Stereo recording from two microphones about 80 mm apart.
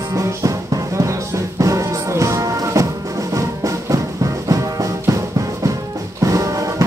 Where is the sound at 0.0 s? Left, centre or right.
Right.